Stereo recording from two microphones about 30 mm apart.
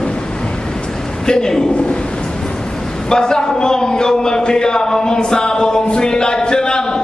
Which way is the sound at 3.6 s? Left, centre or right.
Left.